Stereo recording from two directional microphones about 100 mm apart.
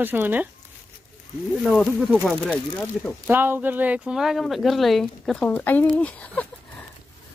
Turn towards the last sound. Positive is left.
turn(degrees=15)  # may be behind; listen again after turning